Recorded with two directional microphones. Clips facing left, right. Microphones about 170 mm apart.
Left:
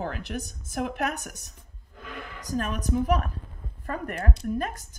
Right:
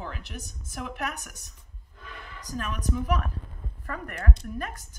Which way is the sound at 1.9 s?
90° left.